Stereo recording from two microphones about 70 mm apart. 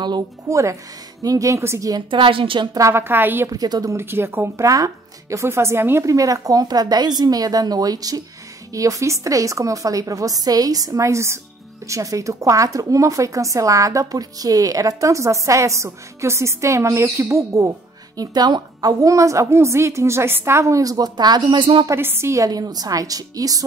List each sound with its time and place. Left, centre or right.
0.5 s speech: right
2.6 s a woman's voice: right
2.9 s speech: right
3.4 s speech: right
3.9 s speech: right
4.6 s speech: right
6.0 s speech: right
21.8 s speech: right
22.5 s speech: right